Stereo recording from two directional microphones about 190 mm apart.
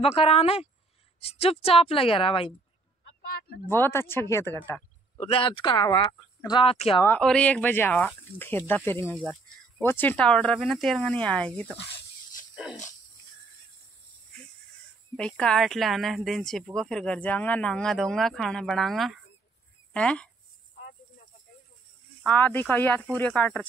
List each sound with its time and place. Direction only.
0.0 s a woman's voice: 30° left (ahead or behind)
3.7 s speech: 10° left (ahead or behind)
5.1 s speech: 30° left (ahead or behind)
7.1 s speech: 5° left (ahead or behind)
15.1 s speech: 5° left (ahead or behind)
22.2 s speech: 10° left (ahead or behind)